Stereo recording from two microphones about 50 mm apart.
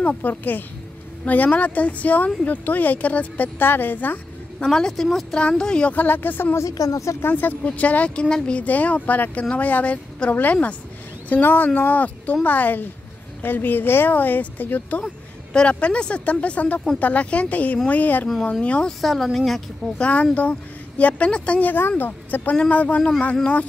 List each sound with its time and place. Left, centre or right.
0.0 s speech: left
3.5 s speech: left
4.6 s speech: centre
5.9 s speech: left
6.5 s speech: left
7.3 s speech: left
8.2 s speech: centre
8.6 s speech: left
15.5 s speech: left
18.4 s speech: centre
18.9 s speech: centre
20.0 s speech: left
22.6 s speech: left